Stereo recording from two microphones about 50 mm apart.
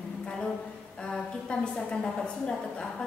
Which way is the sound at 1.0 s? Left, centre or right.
Centre.